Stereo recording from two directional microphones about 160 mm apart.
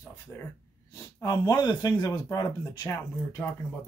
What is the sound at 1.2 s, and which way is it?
Speech, 25° left (ahead or behind).